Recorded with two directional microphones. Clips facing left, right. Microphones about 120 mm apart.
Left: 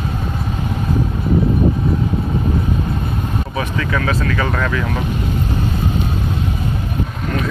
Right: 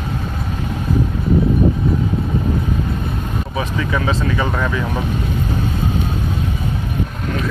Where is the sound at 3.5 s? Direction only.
15° right (ahead or behind).